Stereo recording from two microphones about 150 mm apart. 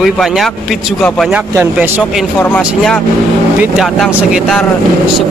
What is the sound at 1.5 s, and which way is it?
Speech, 15° right (ahead or behind).